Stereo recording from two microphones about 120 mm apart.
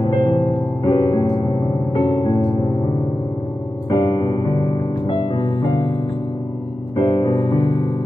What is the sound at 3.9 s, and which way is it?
Music, 35° left (ahead or behind).